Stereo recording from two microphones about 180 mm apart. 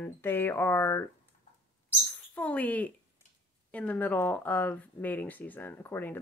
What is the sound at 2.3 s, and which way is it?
Speech, 10° left (ahead or behind).